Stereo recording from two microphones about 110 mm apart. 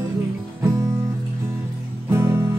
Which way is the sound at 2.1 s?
20° right (ahead or behind).